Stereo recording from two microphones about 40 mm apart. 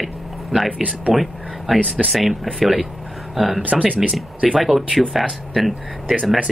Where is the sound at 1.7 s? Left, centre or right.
Centre.